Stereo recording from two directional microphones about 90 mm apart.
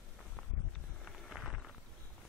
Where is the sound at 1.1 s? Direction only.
Centre (ahead or behind).